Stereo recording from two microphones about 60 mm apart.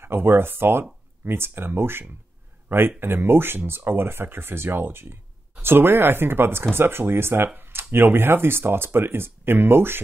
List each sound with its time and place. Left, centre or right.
0.0 s speech: right